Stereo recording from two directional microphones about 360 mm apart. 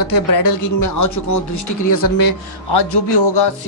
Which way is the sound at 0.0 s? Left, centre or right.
Left.